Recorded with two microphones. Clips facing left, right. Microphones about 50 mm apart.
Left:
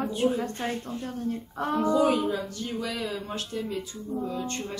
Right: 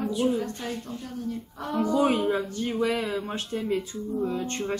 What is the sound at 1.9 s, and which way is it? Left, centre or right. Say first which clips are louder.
Speech: right 2 dB; right.